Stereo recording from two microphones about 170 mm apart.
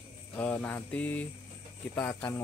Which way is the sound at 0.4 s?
10° left (ahead or behind).